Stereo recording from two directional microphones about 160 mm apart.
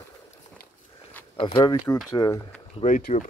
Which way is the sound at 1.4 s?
30° left (ahead or behind).